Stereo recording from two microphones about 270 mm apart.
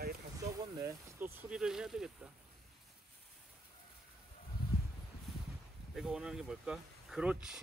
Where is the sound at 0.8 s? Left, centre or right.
Centre.